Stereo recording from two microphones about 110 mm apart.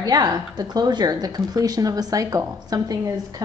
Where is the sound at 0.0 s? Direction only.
40° right (ahead or behind).